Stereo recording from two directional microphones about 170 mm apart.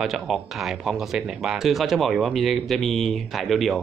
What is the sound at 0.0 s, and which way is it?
Speech, centre (ahead or behind).